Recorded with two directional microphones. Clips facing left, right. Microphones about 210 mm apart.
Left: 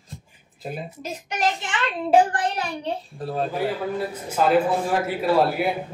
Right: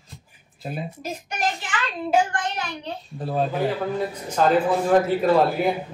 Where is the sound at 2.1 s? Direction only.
30° left (ahead or behind).